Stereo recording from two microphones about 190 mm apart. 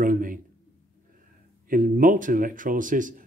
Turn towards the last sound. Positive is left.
turn(degrees=-45)  # may be behind; listen again after turning